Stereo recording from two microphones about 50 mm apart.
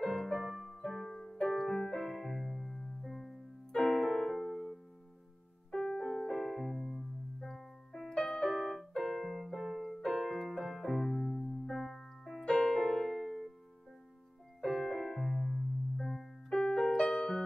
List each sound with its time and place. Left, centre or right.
0.0 s music: centre
3.7 s keyboard: centre
5.7 s piano: centre
8.1 s keyboard: centre
14.6 s keyboard: centre
16.9 s music: centre